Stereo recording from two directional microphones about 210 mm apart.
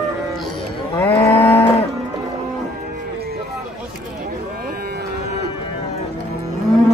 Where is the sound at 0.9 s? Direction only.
10° left (ahead or behind).